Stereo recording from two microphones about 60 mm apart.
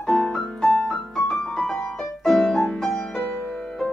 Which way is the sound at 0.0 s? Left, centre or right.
Centre.